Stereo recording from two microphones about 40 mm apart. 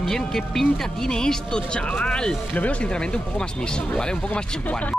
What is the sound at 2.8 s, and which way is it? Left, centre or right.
Speech, left.